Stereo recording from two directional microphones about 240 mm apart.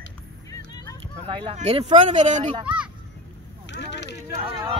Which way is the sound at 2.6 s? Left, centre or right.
Centre.